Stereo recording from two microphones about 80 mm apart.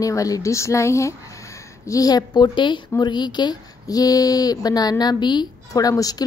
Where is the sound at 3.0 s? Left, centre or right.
Left.